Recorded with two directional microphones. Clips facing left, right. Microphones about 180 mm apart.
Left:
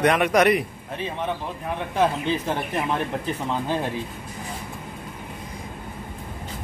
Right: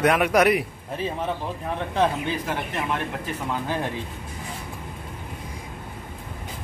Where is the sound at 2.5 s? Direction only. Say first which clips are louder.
Left 2 dB; 30° left (ahead or behind).